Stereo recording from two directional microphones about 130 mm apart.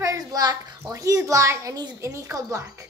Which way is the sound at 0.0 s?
25° right (ahead or behind).